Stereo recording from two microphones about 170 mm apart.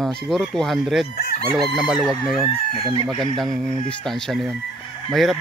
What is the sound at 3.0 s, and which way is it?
Speech, centre (ahead or behind).